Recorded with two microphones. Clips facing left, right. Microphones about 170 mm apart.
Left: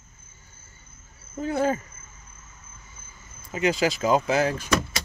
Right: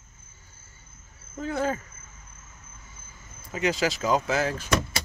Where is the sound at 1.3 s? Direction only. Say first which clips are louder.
Left 3 dB; 10° left (ahead or behind).